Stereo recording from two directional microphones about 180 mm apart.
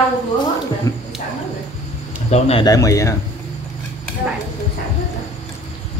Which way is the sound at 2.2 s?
35° left (ahead or behind).